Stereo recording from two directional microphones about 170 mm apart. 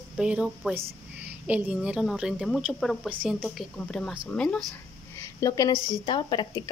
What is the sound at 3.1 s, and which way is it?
A woman's voice, 10° right (ahead or behind).